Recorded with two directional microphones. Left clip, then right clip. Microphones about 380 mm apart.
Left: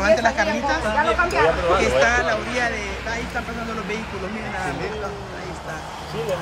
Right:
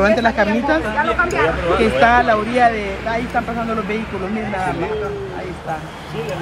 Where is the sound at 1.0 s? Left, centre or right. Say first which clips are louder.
Left 1 dB; left.